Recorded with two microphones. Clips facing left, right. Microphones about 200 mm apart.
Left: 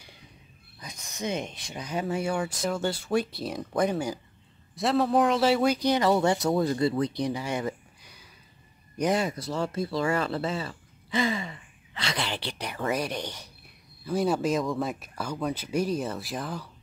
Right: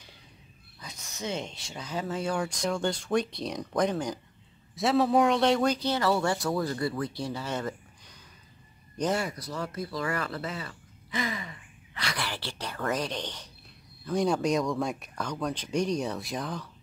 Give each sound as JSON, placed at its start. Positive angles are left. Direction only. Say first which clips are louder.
{"t": 0.7, "sound": "speech", "louder": "left 3 dB", "side_deg": 15}